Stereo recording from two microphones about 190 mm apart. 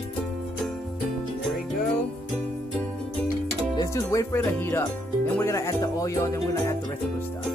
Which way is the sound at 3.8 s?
15° left (ahead or behind).